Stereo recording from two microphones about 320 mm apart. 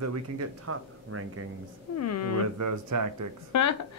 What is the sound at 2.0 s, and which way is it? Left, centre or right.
Speech, left.